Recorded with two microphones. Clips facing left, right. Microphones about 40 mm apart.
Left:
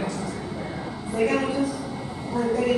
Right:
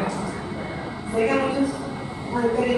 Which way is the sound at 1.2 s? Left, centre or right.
Centre.